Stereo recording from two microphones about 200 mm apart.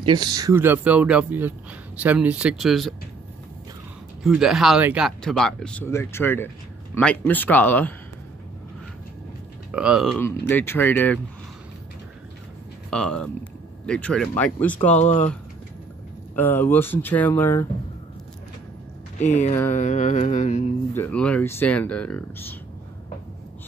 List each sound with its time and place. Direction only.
0.0 s speech: 20° right (ahead or behind); by 2.9 s centre (ahead or behind)
4.2 s speech: centre (ahead or behind)
9.7 s speech: 5° right (ahead or behind)
10.5 s speech: 10° left (ahead or behind)
12.9 s speech: 5° left (ahead or behind)
14.8 s mantra: 35° left (ahead or behind)
16.3 s speech: 10° left (ahead or behind)
19.1 s speech: 35° left (ahead or behind)
19.7 s mantra: 35° left (ahead or behind)
20.9 s speech: 10° left (ahead or behind)